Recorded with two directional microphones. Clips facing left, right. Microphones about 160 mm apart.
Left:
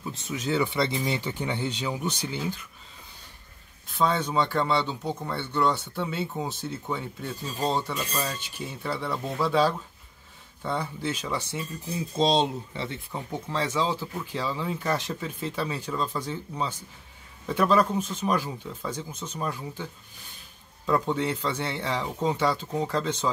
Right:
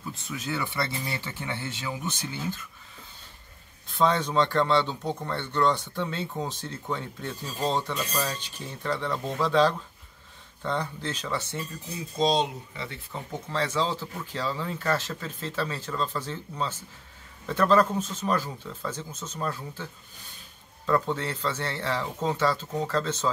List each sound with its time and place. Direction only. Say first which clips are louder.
0.2 s speech: left 6 dB; 20° left (ahead or behind)
4.0 s speech: right 1 dB; 5° left (ahead or behind)
12.2 s speech: left 1 dB; 25° left (ahead or behind)